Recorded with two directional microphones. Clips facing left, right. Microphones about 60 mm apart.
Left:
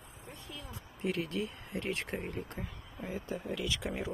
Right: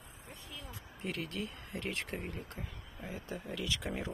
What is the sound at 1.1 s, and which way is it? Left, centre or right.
Speech, centre.